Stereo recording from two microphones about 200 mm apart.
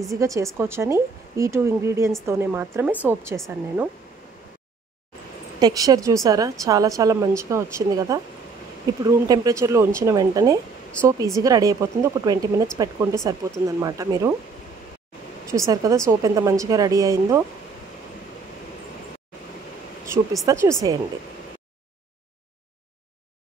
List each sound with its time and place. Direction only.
0.1 s speech: 15° right (ahead or behind)
5.6 s speech: 20° right (ahead or behind)
15.4 s speech: 15° right (ahead or behind)
20.4 s speech: 15° right (ahead or behind)